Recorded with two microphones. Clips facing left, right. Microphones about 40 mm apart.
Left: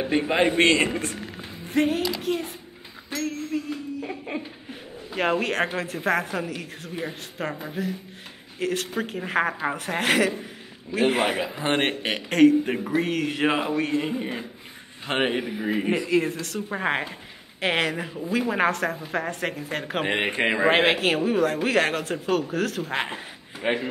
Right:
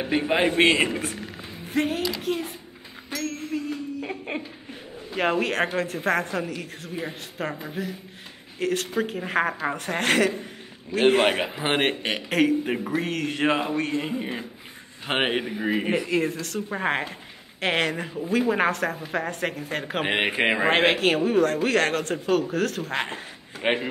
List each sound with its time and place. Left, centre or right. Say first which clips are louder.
0.0 s speech: left 1 dB; centre
0.9 s speech: left 1 dB; centre
3.5 s speech: even; centre
11.2 s a man's voice: right 2 dB; right
11.5 s a man's voice: even; right
11.8 s speech: right 1 dB; centre
15.0 s a man's voice: even; centre
16.1 s speech: left 1 dB; centre
20.3 s a man's voice: right 1 dB; centre
20.6 s speech: left 1 dB; centre
23.6 s a man's voice: right 1 dB; right